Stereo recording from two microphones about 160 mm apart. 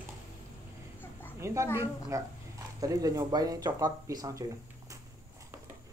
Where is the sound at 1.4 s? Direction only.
15° right (ahead or behind).